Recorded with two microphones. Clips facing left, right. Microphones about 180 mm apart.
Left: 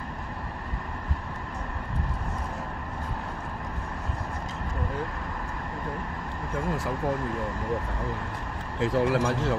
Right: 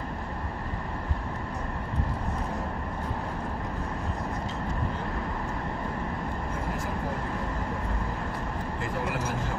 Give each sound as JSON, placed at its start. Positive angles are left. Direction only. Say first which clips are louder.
{"t": 8.7, "sound": "speech", "louder": "left 10 dB", "side_deg": 90}